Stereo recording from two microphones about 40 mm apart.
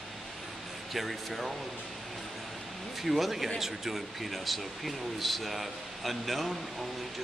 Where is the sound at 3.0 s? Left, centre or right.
Centre.